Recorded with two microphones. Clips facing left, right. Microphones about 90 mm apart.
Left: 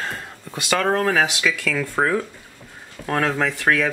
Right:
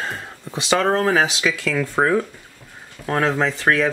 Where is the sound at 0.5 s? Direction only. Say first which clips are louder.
Right 2 dB; 20° right (ahead or behind).